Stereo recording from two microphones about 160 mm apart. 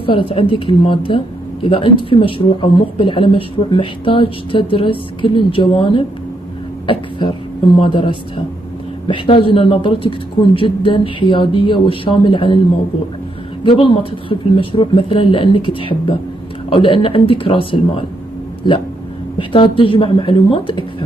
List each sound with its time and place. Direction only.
0.0 s a woman's voice: 35° left (ahead or behind)
13.7 s a woman's voice: 30° left (ahead or behind)
19.3 s a woman's voice: 30° left (ahead or behind)